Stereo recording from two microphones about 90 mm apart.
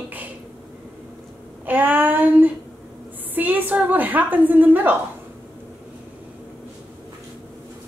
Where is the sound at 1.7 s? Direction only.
20° right (ahead or behind).